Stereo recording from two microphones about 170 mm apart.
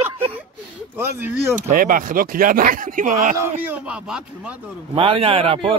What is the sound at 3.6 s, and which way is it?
Speech, 10° right (ahead or behind).